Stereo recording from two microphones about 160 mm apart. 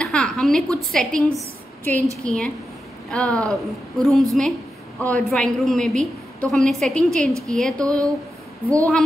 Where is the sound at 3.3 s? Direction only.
20° right (ahead or behind).